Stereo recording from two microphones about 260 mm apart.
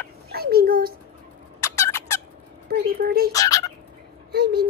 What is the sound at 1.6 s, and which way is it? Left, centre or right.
Turkey, centre.